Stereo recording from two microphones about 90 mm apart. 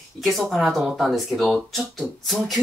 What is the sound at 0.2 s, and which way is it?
Speech, centre (ahead or behind).